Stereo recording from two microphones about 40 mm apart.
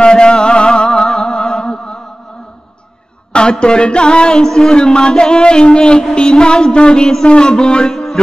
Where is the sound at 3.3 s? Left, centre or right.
Left.